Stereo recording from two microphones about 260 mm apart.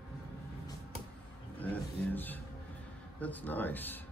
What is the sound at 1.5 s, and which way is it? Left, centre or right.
A man's voice, centre.